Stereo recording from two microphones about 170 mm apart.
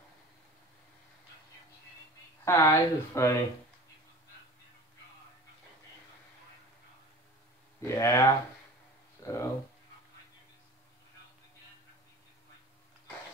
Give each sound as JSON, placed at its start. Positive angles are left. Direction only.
{"t": 2.4, "sound": "speech", "side_deg": 15}
{"t": 7.8, "sound": "speech", "side_deg": 15}
{"t": 9.2, "sound": "a sound", "side_deg": 20}